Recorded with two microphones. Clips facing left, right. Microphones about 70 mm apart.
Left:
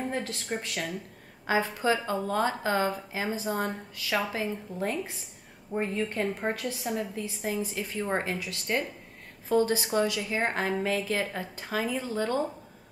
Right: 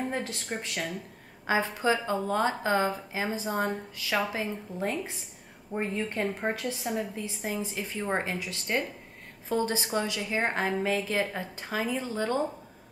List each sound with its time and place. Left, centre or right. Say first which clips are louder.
0.0 s a woman's voice: even; centre